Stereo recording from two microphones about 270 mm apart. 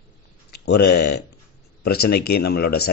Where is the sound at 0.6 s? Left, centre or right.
Left.